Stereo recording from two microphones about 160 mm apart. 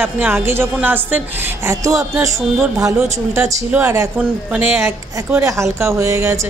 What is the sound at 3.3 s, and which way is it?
Speech, 15° right (ahead or behind).